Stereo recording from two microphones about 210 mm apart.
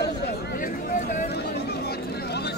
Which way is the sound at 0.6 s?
40° left (ahead or behind).